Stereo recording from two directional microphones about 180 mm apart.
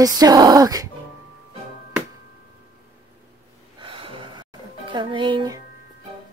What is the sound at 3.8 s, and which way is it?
Gasp, 30° right (ahead or behind).